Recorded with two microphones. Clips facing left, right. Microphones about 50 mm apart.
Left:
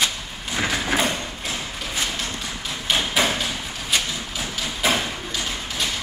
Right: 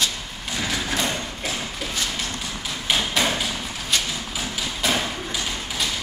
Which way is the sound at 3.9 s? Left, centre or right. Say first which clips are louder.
Left 1 dB; centre.